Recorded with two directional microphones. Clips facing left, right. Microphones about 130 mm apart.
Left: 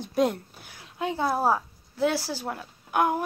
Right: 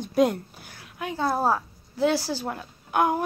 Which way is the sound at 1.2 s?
10° left (ahead or behind).